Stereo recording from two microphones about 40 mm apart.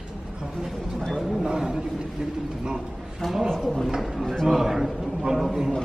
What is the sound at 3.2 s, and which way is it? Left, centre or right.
A man's voice, centre.